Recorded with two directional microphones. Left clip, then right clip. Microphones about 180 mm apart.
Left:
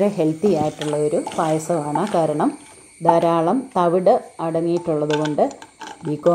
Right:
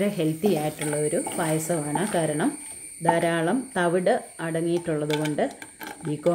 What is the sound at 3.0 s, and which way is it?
Speech, 15° left (ahead or behind).